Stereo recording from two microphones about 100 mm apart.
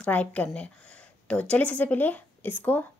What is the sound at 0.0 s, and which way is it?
A woman's voice, 15° left (ahead or behind).